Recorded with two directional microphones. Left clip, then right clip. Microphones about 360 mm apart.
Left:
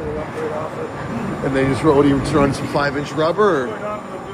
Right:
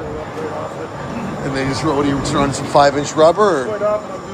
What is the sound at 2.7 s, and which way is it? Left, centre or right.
Speech, centre.